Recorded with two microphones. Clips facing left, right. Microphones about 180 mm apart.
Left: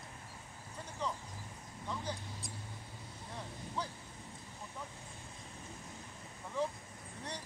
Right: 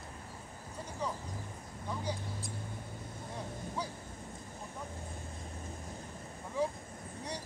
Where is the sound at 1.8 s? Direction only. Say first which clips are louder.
Right 3 dB; 10° right (ahead or behind).